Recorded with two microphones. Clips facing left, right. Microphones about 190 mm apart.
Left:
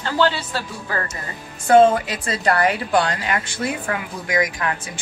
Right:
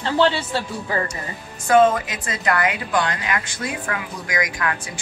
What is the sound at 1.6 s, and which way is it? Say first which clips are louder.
A woman's voice: left 2 dB; 35° left (ahead or behind).